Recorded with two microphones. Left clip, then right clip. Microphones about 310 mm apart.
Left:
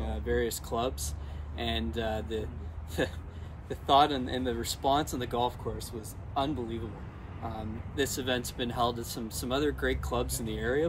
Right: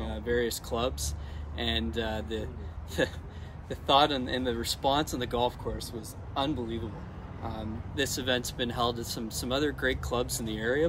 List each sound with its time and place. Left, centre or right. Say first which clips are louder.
0.0 s speech: right 1 dB; centre